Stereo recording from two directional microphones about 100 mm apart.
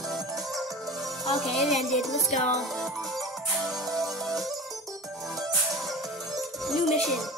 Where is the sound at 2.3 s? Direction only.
Centre (ahead or behind).